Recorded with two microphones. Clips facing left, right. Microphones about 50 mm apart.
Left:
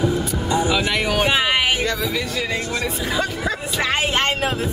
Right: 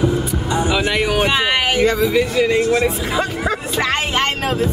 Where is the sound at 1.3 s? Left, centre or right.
Centre.